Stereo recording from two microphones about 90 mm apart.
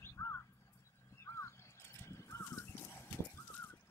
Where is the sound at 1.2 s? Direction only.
30° left (ahead or behind).